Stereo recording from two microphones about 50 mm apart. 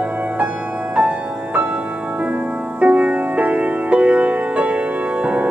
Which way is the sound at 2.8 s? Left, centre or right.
Right.